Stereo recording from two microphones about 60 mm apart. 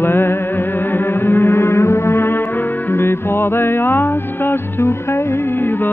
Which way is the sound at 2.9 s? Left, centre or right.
Left.